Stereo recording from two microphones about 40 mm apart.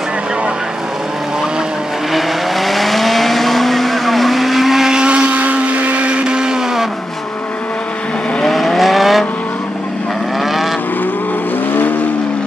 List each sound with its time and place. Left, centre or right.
2.1 s vehicle: centre
4.9 s vehicle: right
8.5 s vehicle: centre